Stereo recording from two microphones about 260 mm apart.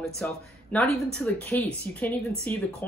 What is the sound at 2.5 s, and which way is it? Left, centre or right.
Speech, centre.